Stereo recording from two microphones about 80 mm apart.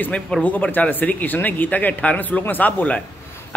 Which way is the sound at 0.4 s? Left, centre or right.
Centre.